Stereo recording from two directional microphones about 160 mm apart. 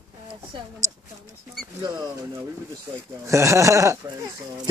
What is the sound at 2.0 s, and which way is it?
Speech, 20° right (ahead or behind).